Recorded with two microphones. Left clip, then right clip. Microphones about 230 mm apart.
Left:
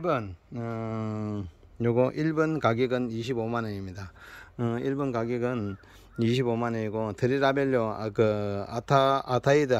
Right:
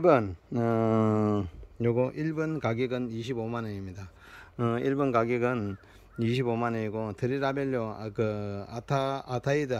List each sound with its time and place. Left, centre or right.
0.0 s speech: right
1.8 s speech: centre